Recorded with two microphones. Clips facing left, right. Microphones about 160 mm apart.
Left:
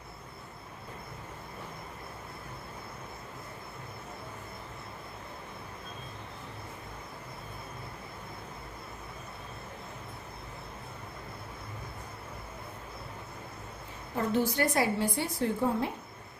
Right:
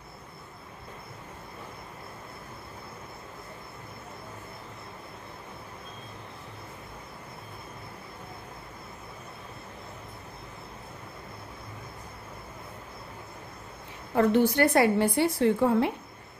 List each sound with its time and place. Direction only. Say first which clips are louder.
14.1 s a woman's voice: right 7 dB; 65° right (ahead or behind)